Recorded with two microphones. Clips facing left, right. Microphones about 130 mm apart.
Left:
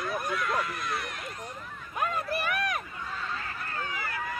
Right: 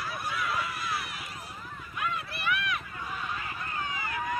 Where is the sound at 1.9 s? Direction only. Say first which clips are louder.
Left 5 dB; 45° left (ahead or behind).